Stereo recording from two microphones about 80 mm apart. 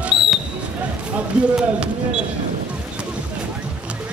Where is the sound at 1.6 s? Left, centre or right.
Centre.